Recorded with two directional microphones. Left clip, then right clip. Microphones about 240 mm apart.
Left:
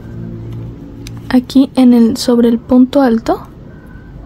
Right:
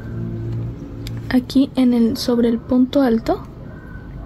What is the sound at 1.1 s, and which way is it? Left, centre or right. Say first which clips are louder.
Speech: left 6 dB; centre.